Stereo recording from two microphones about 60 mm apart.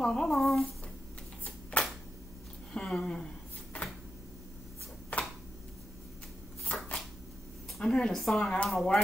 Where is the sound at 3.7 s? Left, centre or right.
Left.